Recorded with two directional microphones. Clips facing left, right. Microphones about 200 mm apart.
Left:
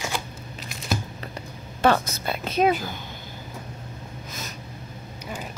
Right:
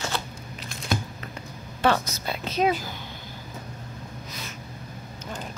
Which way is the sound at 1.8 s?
50° left (ahead or behind).